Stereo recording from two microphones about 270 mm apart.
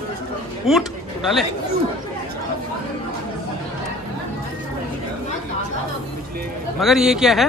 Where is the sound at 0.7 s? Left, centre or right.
Centre.